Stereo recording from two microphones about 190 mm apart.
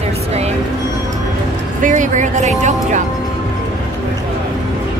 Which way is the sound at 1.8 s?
40° right (ahead or behind).